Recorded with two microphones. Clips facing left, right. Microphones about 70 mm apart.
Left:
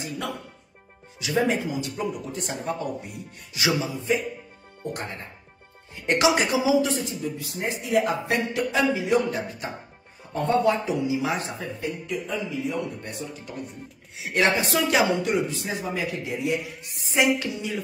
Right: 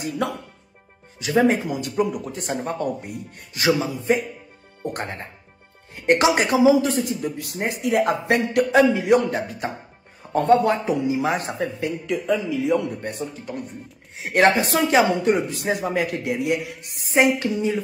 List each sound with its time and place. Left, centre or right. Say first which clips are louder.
1.2 s speech: right 5 dB; right
10.3 s a woman's voice: right 5 dB; right
11.1 s speech: right 4 dB; right
11.8 s speech: right 5 dB; right
13.0 s speech: right 6 dB; right
15.5 s a woman's voice: right 6 dB; right
17.2 s a woman's voice: right 4 dB; right